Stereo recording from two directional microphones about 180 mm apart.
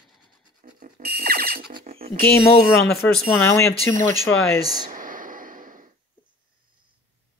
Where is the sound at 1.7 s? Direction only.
35° right (ahead or behind).